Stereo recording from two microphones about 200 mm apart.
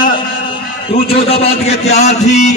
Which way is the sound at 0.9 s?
30° left (ahead or behind).